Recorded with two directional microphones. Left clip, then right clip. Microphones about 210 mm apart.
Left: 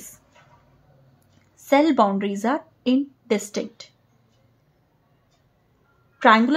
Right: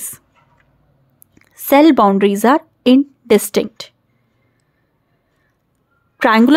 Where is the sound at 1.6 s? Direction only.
45° right (ahead or behind).